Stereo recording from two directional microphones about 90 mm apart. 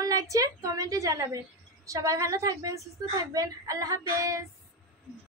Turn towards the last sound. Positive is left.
turn(degrees=-40)  # may be behind; listen again after turning